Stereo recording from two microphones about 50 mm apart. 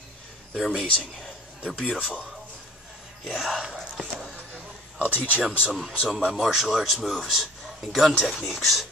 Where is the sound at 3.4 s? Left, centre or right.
Centre.